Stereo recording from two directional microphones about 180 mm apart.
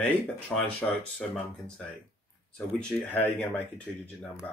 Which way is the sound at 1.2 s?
5° left (ahead or behind).